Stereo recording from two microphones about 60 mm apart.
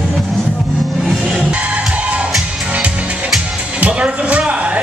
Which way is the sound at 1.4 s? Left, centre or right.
Right.